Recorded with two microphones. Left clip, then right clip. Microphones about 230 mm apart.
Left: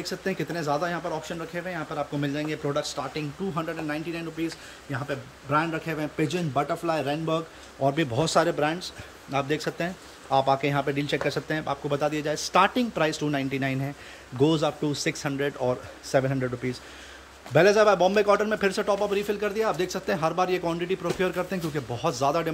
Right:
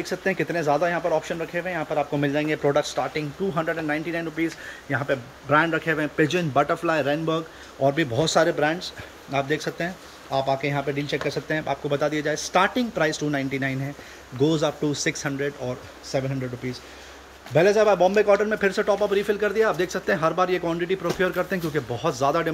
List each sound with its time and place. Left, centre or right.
0.0 s a man's voice: centre
17.6 s a man's voice: centre